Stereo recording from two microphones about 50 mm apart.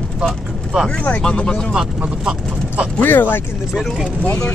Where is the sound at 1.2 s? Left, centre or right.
Centre.